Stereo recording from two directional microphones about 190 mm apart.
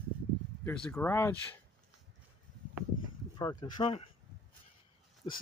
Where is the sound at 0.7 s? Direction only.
10° left (ahead or behind).